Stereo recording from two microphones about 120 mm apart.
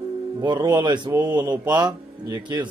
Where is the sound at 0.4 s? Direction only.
35° right (ahead or behind).